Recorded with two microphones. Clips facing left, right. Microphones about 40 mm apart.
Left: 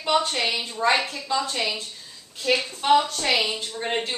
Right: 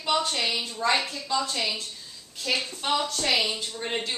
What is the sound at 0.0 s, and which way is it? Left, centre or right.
A woman's voice, centre.